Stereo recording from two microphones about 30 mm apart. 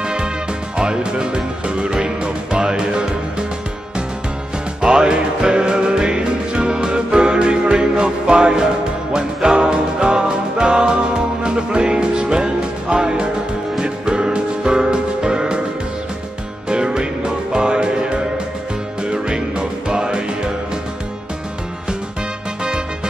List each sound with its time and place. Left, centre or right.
0.0 s music: right
0.7 s speech: right
4.8 s music: right
16.6 s music: right